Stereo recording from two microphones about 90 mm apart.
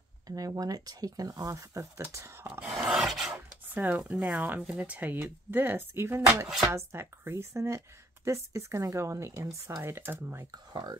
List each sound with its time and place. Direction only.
0.3 s speech: 40° right (ahead or behind)
2.7 s filing: 5° right (ahead or behind)
3.7 s speech: 20° right (ahead or behind)
10.5 s speech: 45° right (ahead or behind)